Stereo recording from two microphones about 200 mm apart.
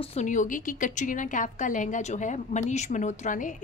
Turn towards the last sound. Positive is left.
turn(degrees=40)  # may be behind; listen again after turning